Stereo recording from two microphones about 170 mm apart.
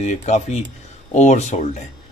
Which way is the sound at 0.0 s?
40° left (ahead or behind).